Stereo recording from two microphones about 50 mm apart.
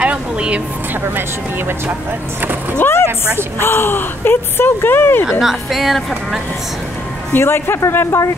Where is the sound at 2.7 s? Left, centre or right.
Left.